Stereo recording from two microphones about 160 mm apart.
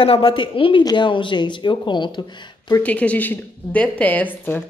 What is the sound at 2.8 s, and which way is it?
A woman's voice, 10° left (ahead or behind).